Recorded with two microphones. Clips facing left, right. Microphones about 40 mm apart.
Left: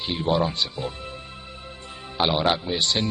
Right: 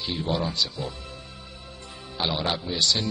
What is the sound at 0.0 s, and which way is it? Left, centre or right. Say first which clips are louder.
A man's voice: left 4 dB; left.